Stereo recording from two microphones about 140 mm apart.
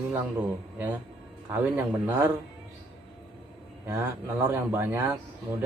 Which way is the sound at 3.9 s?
15° right (ahead or behind).